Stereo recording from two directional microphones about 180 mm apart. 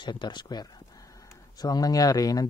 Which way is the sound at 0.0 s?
25° left (ahead or behind).